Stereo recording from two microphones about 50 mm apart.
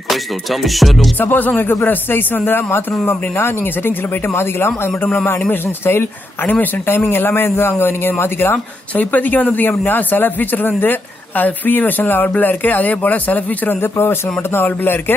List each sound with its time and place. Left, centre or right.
0.1 s music: centre
1.1 s a man's voice: left
3.1 s a man's voice: left
4.3 s a man's voice: left
6.9 s a man's voice: left
8.9 s speech: left
13.7 s a man's voice: left